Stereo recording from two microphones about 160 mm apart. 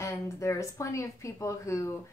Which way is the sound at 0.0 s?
20° left (ahead or behind).